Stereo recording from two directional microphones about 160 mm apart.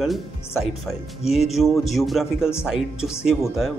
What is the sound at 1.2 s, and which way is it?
Speech, 40° left (ahead or behind).